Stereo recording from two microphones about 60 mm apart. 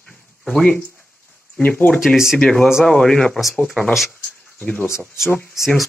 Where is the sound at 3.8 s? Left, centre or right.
Left.